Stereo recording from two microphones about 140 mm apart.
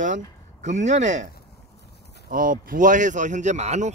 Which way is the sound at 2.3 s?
80° right.